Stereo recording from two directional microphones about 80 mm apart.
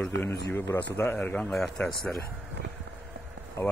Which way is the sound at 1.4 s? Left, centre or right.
Centre.